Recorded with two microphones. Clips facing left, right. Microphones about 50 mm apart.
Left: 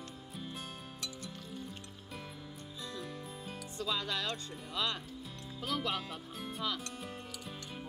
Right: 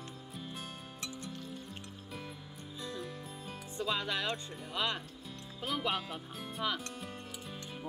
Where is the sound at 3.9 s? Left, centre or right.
Centre.